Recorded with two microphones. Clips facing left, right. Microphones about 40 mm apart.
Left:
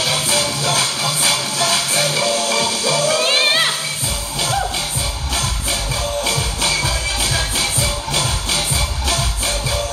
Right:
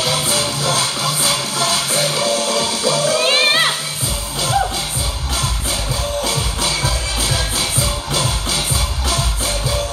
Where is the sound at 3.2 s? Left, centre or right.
Centre.